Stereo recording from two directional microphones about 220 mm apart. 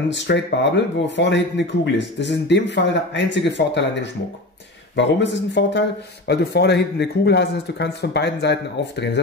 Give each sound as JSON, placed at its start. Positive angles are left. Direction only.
{"t": 0.1, "sound": "speech", "side_deg": 55}